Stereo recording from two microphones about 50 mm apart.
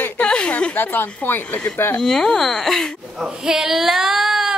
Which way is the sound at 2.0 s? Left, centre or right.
Centre.